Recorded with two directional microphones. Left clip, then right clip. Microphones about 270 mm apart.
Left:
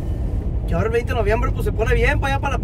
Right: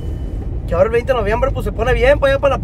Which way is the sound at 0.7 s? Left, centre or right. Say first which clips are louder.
Right 8 dB; centre.